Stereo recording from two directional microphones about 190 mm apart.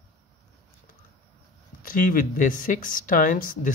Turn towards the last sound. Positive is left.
turn(degrees=45)  # may be behind; listen again after turning